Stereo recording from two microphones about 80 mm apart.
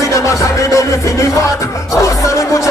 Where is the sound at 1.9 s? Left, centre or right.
Left.